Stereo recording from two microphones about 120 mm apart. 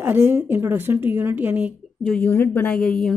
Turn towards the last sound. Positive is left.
turn(degrees=10)  # may be behind; listen again after turning